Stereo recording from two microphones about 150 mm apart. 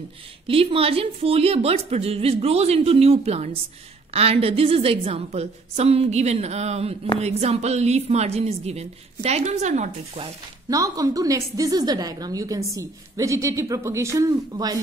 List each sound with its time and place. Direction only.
0.5 s a woman's voice: 40° right (ahead or behind)
10.7 s a woman's voice: 25° right (ahead or behind)